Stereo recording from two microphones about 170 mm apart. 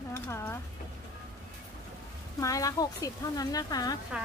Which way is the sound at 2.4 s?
20° left (ahead or behind).